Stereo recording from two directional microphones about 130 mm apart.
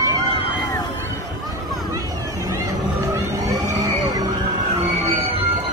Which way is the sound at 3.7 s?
25° right (ahead or behind).